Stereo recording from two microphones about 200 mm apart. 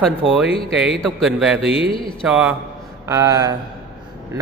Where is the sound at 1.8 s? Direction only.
25° left (ahead or behind).